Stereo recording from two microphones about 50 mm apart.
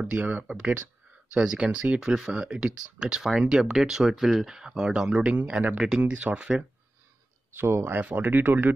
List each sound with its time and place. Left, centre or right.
0.1 s speech: right
5.8 s speech: centre
7.5 s speech: right
8.0 s speech: right